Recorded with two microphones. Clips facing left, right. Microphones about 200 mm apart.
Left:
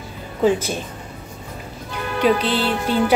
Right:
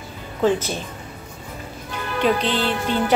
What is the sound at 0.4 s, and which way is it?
Speech, 10° left (ahead or behind).